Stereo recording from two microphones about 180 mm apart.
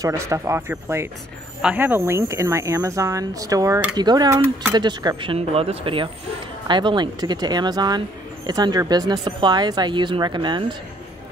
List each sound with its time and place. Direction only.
0.0 s speech: 15° right (ahead or behind)